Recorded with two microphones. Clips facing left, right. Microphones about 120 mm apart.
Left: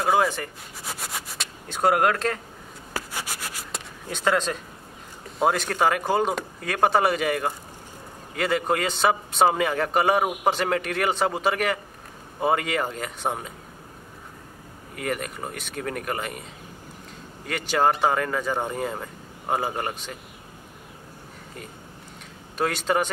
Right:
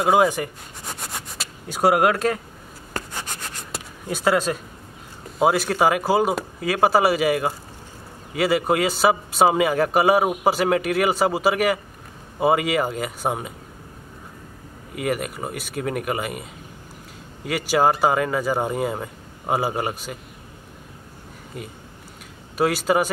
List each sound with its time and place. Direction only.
0.0 s speech: 5° right (ahead or behind)
0.8 s a sound: centre (ahead or behind)
2.9 s rub: 5° left (ahead or behind)
4.1 s a man's voice: 5° right (ahead or behind)
15.0 s a man's voice: 5° right (ahead or behind)
17.5 s a man's voice: 5° right (ahead or behind)
22.6 s a man's voice: 5° right (ahead or behind)